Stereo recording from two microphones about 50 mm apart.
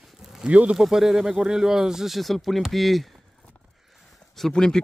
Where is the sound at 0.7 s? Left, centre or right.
Centre.